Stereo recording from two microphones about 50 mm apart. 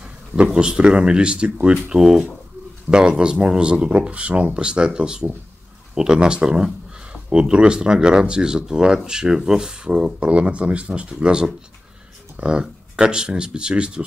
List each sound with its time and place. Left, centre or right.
0.6 s speech: centre